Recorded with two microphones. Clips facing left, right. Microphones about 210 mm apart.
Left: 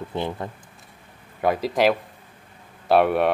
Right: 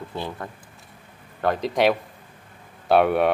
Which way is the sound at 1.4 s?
5° left (ahead or behind).